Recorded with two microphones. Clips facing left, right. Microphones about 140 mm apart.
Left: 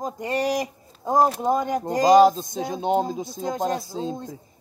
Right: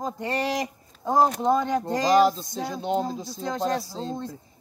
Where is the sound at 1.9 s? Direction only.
45° left (ahead or behind).